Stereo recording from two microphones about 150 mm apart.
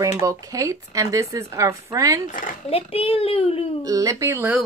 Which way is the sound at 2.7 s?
40° left (ahead or behind).